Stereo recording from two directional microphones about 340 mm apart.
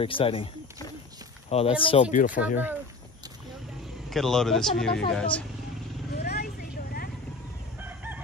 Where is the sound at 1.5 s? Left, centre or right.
Centre.